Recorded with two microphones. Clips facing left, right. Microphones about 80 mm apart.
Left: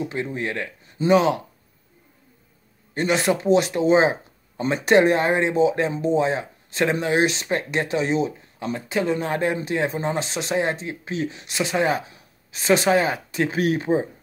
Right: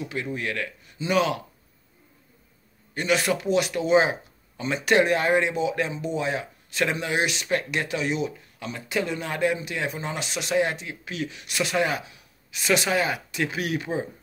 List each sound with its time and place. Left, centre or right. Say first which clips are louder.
0.0 s speech: left 3 dB; left
2.9 s speech: left 3 dB; left